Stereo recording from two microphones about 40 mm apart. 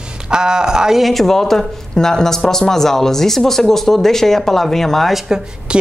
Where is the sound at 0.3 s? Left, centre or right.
Centre.